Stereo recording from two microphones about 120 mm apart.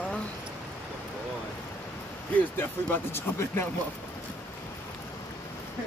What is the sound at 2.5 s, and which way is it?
Speech, 15° left (ahead or behind).